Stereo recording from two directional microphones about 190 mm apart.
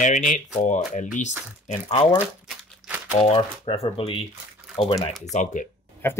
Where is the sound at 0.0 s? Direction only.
40° left (ahead or behind).